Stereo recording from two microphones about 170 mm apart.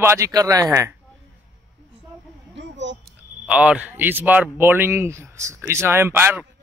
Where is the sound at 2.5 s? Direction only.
90° right.